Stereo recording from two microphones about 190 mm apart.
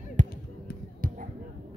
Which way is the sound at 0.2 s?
40° right (ahead or behind).